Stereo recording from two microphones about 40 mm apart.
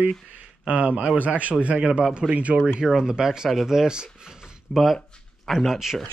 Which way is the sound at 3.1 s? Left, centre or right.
Centre.